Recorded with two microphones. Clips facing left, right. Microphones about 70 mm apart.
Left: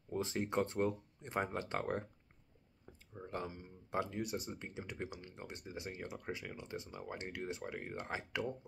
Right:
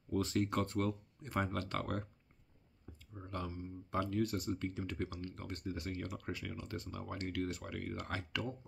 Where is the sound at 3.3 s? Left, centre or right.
Left.